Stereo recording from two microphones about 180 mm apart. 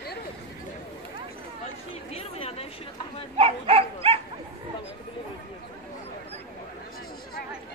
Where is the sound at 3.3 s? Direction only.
35° right (ahead or behind).